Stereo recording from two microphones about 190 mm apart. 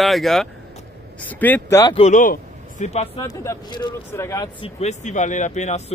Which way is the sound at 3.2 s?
15° left (ahead or behind).